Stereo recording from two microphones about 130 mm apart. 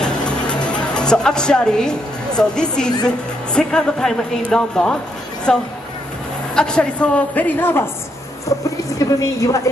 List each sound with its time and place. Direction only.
0.0 s music: 10° left (ahead or behind)
3.1 s a woman's voice: 5° left (ahead or behind); by 9.6 s 25° left (ahead or behind)